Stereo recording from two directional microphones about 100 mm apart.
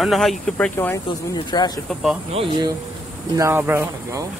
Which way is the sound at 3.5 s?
25° right (ahead or behind).